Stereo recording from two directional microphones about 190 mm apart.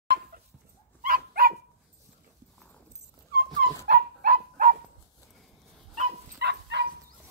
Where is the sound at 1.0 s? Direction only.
50° right (ahead or behind).